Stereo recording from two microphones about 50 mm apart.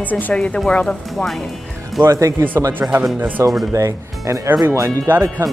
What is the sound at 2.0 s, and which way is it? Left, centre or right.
Speech, right.